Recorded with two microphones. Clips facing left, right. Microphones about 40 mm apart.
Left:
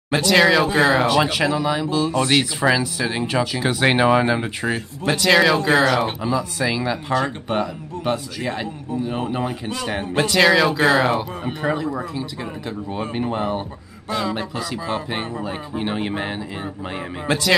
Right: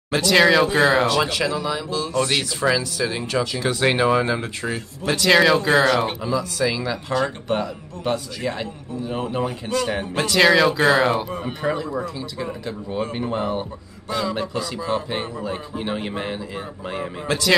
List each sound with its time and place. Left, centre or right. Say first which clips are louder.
0.1 s speech: even; centre
1.0 s speech: left 2 dB; centre
5.2 s speech: even; centre
6.2 s a man's voice: even; centre
10.3 s a man's voice: right 1 dB; centre